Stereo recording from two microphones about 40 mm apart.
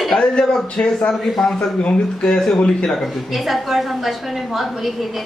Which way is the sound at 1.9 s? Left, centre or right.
Centre.